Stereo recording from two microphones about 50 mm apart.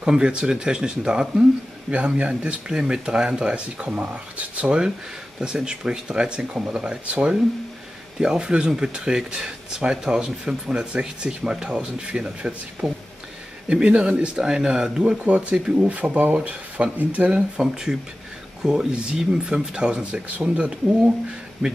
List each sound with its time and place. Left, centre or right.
0.0 s speech: centre
1.9 s speech: right
2.7 s speech: centre; by 17.3 s right
17.6 s speech: centre